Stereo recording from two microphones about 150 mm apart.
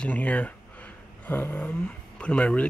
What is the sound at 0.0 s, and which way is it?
Speech, 10° left (ahead or behind).